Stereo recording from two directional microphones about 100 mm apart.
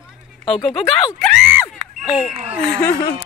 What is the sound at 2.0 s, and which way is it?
Speech, 5° right (ahead or behind).